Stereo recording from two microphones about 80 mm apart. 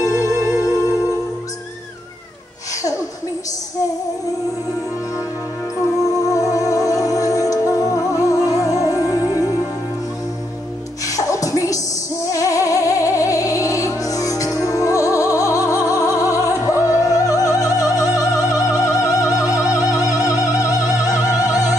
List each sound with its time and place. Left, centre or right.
0.0 s music: left
5.8 s music: left
11.1 s music: left
19.5 s opera: left
21.4 s music: left